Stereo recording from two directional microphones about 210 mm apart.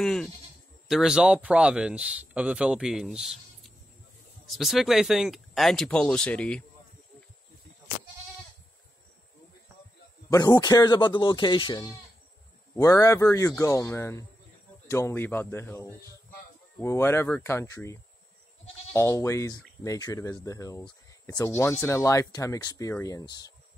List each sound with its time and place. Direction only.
0.0 s sheep: centre (ahead or behind)
0.8 s speech: centre (ahead or behind)
10.3 s speech: 15° left (ahead or behind)
18.9 s speech: 15° left (ahead or behind)